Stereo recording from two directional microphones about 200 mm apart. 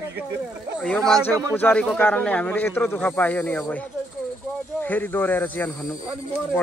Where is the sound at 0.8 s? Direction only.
5° left (ahead or behind).